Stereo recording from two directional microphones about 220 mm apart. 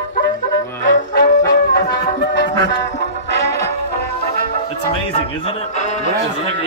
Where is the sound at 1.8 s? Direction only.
50° left (ahead or behind).